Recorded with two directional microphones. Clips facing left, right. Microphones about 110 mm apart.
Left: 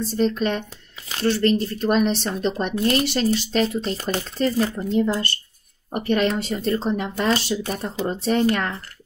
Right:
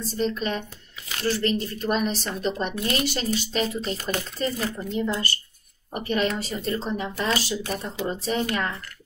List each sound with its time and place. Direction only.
0.2 s speech: 40° left (ahead or behind)